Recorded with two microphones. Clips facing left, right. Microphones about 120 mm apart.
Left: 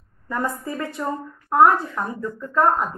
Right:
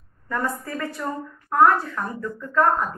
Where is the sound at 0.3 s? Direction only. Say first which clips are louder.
Left 1 dB; 20° left (ahead or behind).